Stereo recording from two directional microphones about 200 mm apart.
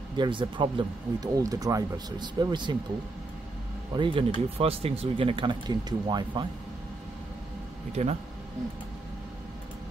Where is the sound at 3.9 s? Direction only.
25° right (ahead or behind).